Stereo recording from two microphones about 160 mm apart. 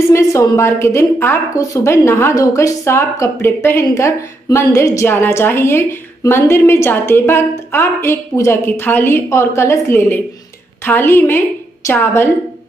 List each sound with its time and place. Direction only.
0.1 s a woman's voice: 15° left (ahead or behind)